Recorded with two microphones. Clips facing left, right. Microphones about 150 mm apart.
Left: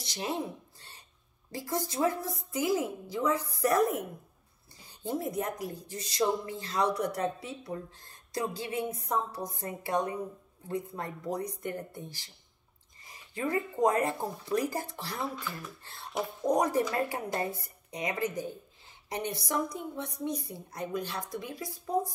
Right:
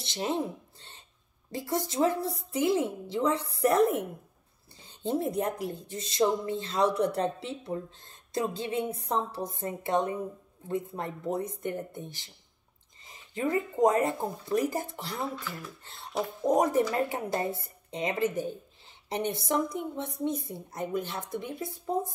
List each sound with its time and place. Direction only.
0.0 s speech: 25° right (ahead or behind)
1.5 s speech: 20° right (ahead or behind)
5.0 s speech: 30° right (ahead or behind)
15.8 s a sound: 20° right (ahead or behind)
16.2 s speech: 25° right (ahead or behind)